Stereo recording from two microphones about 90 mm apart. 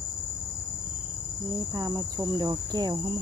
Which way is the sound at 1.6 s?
40° right (ahead or behind).